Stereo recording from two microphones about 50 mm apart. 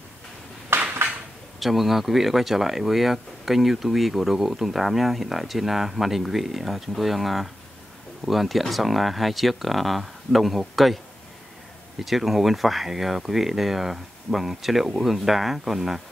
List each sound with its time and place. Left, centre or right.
0.7 s a sound: right
1.6 s speech: centre
12.0 s speech: centre